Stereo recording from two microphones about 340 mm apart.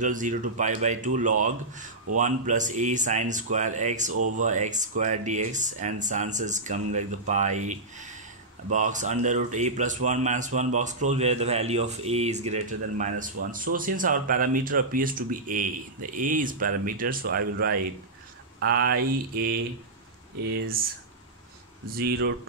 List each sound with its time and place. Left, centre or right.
0.0 s speech: right
21.9 s speech: right